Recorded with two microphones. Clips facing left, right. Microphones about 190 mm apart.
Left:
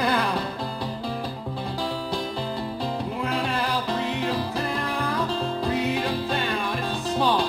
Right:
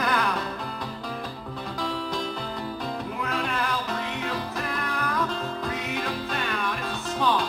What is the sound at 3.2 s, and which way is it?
Music, 30° left (ahead or behind).